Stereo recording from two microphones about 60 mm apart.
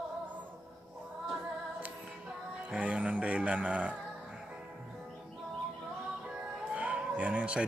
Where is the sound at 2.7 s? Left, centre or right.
Right.